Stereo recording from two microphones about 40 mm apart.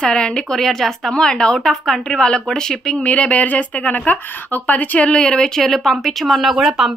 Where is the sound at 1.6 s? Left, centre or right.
Centre.